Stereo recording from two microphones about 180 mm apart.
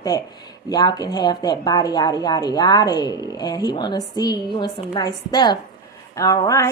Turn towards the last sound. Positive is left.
turn(degrees=15)  # may be behind; listen again after turning